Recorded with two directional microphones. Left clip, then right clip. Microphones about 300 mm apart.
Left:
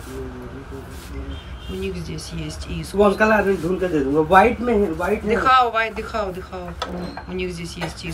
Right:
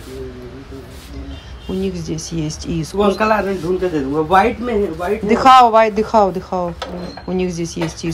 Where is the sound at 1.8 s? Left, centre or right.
Centre.